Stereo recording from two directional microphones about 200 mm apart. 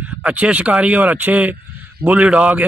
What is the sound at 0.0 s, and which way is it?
A man's voice, 5° right (ahead or behind).